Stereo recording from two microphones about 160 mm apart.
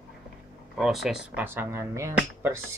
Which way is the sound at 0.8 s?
Centre (ahead or behind).